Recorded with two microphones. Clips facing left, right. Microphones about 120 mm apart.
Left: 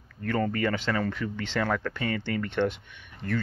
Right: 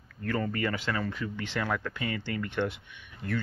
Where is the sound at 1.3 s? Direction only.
75° left (ahead or behind).